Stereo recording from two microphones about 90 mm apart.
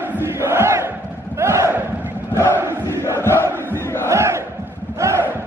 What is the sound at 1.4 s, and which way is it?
Battle cry, 30° right (ahead or behind).